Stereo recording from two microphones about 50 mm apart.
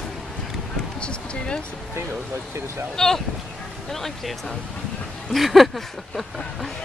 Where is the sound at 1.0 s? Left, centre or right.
Left.